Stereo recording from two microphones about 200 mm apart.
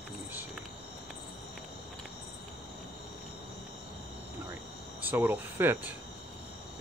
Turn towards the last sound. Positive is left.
turn(degrees=-10)  # may be behind; listen again after turning